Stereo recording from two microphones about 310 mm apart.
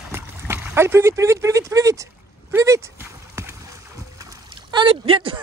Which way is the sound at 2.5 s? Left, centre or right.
Centre.